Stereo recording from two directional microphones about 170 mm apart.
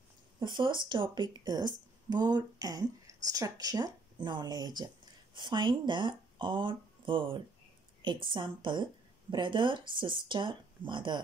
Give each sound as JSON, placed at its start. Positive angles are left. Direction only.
{"t": 0.4, "sound": "speech", "side_deg": -25}